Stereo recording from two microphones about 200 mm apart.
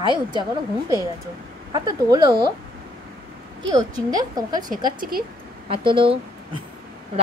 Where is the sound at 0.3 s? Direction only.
20° right (ahead or behind).